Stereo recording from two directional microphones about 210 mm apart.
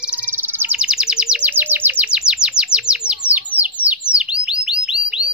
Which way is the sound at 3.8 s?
5° right (ahead or behind).